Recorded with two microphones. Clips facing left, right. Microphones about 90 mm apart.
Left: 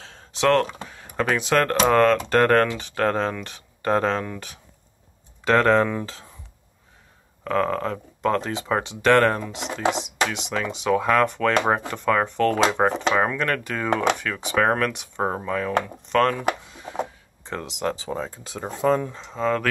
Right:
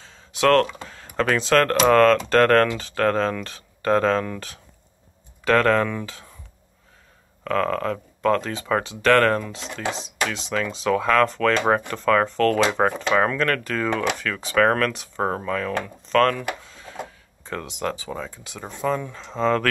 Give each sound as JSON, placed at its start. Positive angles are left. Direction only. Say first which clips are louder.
{"t": 0.3, "sound": "speech", "louder": "right 2 dB", "side_deg": 20}
{"t": 7.4, "sound": "speech", "louder": "even", "side_deg": 20}
{"t": 19.3, "sound": "speech", "louder": "right 2 dB", "side_deg": 5}